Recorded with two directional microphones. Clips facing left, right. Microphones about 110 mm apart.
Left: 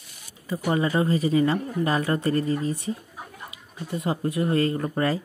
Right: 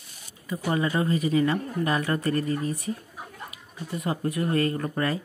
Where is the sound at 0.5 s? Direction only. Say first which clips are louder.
Left 2 dB; 25° left (ahead or behind).